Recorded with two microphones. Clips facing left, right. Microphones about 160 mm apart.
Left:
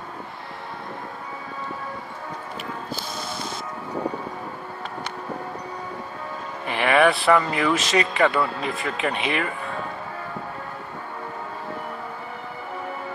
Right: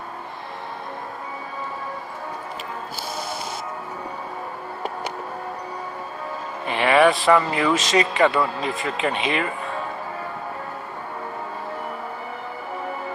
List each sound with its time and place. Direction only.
6.6 s speech: 20° right (ahead or behind)